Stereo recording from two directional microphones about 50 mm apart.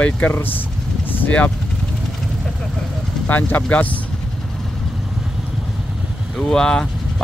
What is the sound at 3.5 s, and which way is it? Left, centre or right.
Speech, left.